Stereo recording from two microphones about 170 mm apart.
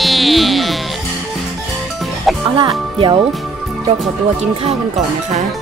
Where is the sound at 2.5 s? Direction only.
30° right (ahead or behind).